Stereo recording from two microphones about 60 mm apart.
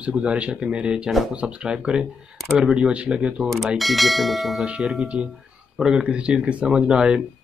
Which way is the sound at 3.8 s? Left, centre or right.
Centre.